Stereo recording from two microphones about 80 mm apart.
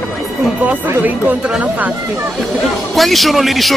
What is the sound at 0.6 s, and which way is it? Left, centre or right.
Speech, right.